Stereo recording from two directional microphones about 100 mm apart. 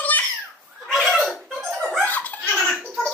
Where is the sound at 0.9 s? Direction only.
Centre (ahead or behind).